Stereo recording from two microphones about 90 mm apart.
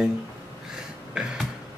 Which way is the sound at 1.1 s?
10° right (ahead or behind).